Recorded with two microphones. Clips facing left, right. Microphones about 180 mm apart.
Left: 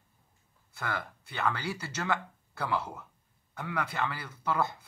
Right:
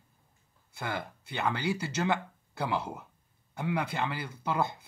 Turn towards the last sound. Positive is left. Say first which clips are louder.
# even
turn(degrees=-20)  # may be behind; listen again after turning